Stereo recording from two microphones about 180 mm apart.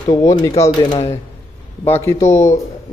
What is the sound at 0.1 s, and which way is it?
A man's voice, 20° left (ahead or behind).